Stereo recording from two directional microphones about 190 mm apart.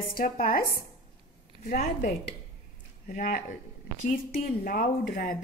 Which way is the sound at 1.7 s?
45° left (ahead or behind).